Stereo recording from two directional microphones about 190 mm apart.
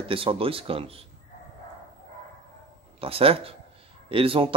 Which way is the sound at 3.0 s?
30° right (ahead or behind).